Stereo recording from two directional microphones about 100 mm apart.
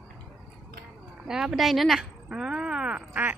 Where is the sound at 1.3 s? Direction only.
5° right (ahead or behind).